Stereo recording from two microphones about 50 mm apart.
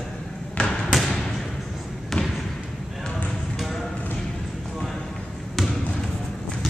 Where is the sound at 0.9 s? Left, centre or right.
Centre.